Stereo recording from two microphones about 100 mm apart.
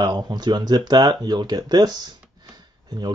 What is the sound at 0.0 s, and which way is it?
Speech, 45° right (ahead or behind).